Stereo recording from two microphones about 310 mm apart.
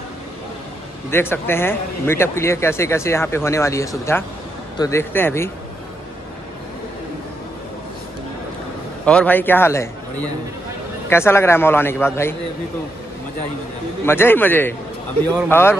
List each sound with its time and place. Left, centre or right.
1.1 s speech: centre
9.0 s speech: centre
11.1 s speech: centre
14.0 s speech: centre